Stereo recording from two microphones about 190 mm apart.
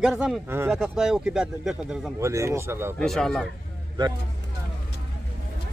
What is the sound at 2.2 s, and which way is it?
Speech, 15° right (ahead or behind).